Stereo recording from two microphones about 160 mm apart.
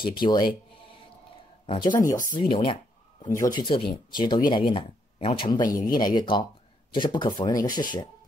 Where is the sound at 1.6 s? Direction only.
30° left (ahead or behind).